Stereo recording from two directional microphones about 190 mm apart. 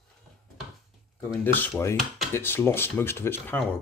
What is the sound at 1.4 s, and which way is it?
Speech, 10° left (ahead or behind).